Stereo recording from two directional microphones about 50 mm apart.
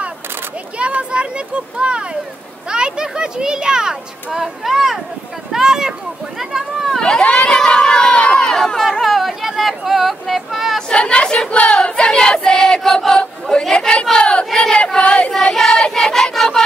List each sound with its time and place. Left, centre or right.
0.7 s a child's voice: right
6.9 s speech: centre
7.2 s crowd: centre
9.0 s speech: centre
10.9 s choir: left
13.2 s speech: centre
14.1 s child singing: centre
15.0 s child singing: left
15.5 s child singing: centre
15.8 s choir: centre